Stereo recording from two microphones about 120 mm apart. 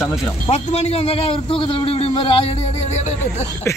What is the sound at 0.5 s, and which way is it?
A man's voice, 60° left (ahead or behind).